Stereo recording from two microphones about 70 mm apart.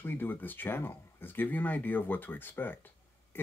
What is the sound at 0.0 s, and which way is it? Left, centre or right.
Speech, left.